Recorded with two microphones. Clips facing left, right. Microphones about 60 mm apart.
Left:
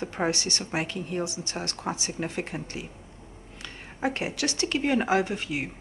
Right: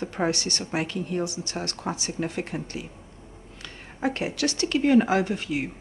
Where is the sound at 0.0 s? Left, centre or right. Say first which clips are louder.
Right 1 dB; centre.